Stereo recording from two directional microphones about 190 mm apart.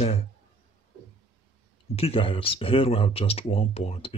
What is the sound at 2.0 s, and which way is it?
Speech, 30° left (ahead or behind).